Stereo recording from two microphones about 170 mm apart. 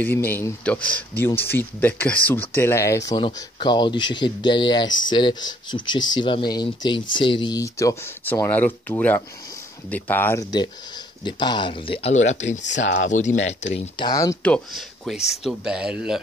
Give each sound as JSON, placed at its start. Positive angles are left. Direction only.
{"t": 0.0, "sound": "speech", "side_deg": 10}
{"t": 11.2, "sound": "speech", "side_deg": 25}
{"t": 12.6, "sound": "speech", "side_deg": 90}
{"t": 13.1, "sound": "speech", "side_deg": 45}
{"t": 13.9, "sound": "speech", "side_deg": 25}
{"t": 14.4, "sound": "speech", "side_deg": 5}